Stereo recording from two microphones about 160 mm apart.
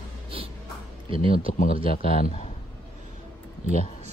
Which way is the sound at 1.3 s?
60° left (ahead or behind).